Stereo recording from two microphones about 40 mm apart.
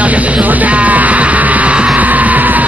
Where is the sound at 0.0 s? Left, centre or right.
Right.